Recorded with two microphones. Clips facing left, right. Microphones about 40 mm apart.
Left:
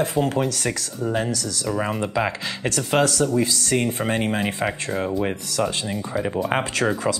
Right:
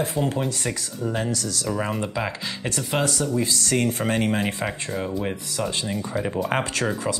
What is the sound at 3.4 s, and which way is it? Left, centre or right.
Speech, left.